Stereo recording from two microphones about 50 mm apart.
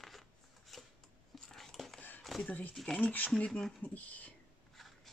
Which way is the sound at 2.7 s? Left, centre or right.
Centre.